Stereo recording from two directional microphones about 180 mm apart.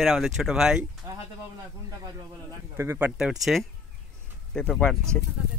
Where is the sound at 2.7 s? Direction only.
15° right (ahead or behind); by 4.9 s 5° left (ahead or behind).